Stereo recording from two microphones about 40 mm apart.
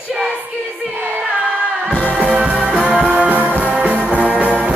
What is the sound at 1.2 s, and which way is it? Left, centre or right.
Music, right.